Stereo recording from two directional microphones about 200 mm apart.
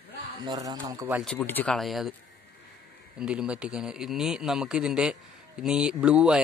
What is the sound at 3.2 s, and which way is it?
Speech, 5° right (ahead or behind).